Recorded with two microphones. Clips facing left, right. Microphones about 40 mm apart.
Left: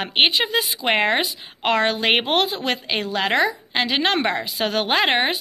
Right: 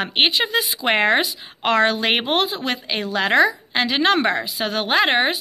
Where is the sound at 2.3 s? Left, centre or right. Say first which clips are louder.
Even; left.